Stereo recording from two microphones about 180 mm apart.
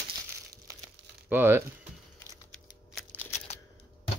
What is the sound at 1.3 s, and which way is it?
Speech, 10° right (ahead or behind).